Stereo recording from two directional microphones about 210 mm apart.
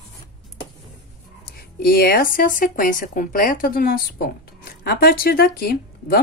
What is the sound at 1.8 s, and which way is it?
A woman's voice, 45° left (ahead or behind).